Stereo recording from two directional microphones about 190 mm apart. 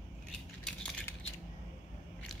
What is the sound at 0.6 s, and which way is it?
Typing, 5° left (ahead or behind).